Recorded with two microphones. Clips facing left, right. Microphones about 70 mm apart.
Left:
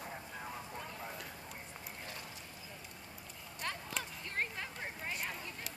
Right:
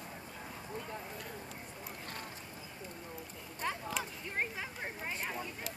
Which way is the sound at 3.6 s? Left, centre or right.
Centre.